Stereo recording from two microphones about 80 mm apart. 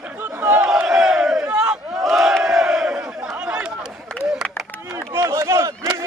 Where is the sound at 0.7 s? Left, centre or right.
Centre.